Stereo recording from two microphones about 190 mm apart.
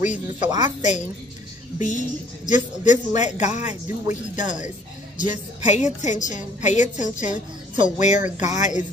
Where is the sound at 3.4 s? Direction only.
40° left (ahead or behind).